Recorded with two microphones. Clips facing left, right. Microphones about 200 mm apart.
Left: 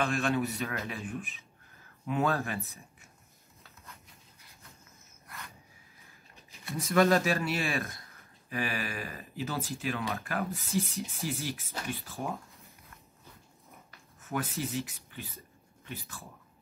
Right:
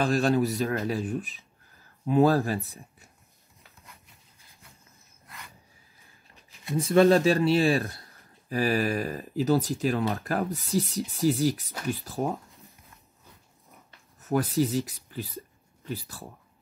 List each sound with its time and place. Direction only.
0.0 s speech: 35° right (ahead or behind)
6.6 s speech: 30° right (ahead or behind)
14.3 s speech: 35° right (ahead or behind)